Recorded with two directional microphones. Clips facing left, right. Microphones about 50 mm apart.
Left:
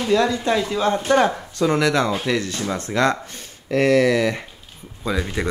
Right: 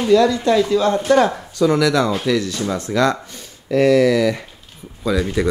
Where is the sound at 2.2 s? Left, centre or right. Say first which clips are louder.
Right 3 dB; left.